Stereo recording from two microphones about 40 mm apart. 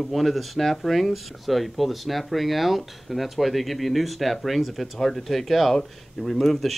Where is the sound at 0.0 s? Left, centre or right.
Centre.